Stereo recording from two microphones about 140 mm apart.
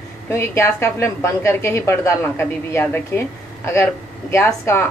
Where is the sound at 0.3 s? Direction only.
20° left (ahead or behind).